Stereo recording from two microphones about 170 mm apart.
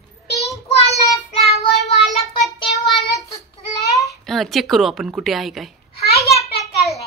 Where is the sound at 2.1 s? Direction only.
Centre (ahead or behind).